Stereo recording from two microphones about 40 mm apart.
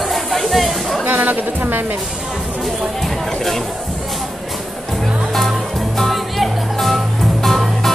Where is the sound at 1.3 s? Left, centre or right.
Right.